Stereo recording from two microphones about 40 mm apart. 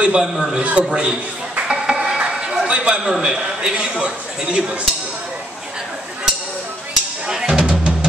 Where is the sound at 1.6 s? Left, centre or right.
Right.